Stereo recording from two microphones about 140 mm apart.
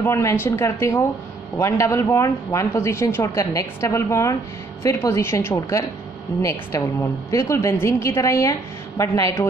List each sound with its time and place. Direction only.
0.0 s a woman's voice: 20° left (ahead or behind)